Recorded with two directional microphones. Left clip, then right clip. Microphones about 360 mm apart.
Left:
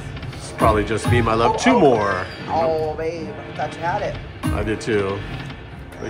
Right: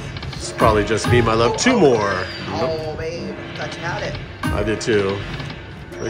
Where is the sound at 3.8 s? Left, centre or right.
Centre.